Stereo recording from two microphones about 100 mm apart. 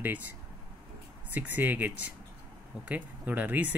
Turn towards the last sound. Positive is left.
turn(degrees=-15)  # may be behind; listen again after turning